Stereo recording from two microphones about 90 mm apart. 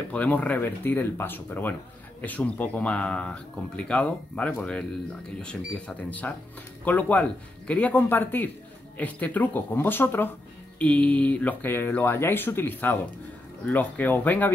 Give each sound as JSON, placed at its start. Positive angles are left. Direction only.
{"t": 0.1, "sound": "speech", "side_deg": 15}